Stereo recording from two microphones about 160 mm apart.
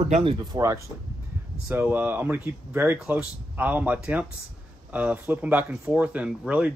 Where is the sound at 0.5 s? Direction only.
20° right (ahead or behind).